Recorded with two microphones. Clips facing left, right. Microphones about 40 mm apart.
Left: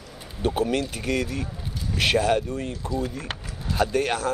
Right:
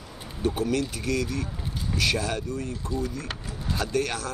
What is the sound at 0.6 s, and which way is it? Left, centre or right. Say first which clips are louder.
Speech: left 4 dB; left.